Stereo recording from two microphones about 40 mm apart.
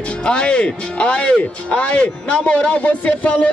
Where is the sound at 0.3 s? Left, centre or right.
Left.